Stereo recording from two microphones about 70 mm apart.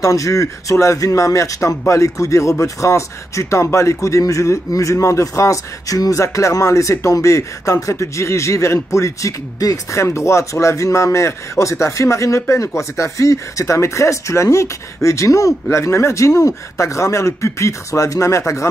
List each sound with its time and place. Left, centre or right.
0.0 s speech: left